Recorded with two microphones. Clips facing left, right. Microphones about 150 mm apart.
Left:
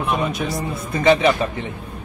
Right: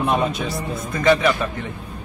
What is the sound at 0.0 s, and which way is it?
Speech, 30° right (ahead or behind).